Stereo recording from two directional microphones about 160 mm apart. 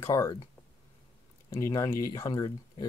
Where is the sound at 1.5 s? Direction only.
20° left (ahead or behind).